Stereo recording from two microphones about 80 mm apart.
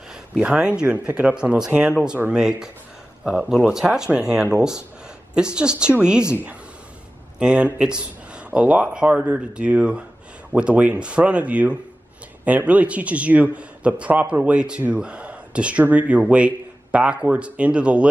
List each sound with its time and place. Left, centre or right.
0.4 s a man's voice: centre
7.3 s a man's voice: centre